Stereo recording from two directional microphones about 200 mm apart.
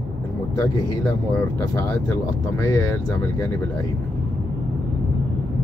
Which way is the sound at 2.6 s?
15° left (ahead or behind).